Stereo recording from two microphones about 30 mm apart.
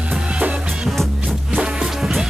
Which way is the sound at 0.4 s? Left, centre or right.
Right.